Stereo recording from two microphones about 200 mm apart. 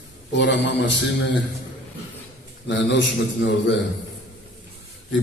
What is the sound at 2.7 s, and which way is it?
A man's voice, 70° left (ahead or behind).